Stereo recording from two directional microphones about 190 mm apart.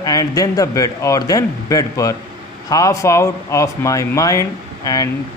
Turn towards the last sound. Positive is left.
turn(degrees=20)  # may be behind; listen again after turning